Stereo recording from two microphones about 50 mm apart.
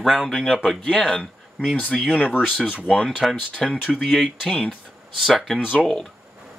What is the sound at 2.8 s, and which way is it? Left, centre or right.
Speech, centre.